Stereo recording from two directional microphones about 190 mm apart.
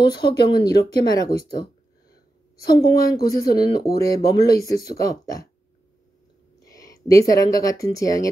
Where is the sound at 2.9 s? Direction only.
20° left (ahead or behind).